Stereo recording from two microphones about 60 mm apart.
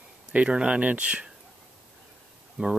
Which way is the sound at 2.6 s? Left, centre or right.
Right.